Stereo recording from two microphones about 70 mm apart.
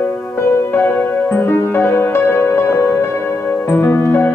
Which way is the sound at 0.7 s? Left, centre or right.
Left.